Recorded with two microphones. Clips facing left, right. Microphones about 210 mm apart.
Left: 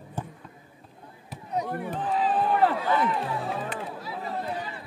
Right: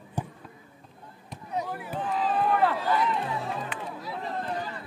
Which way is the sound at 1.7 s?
5° right (ahead or behind).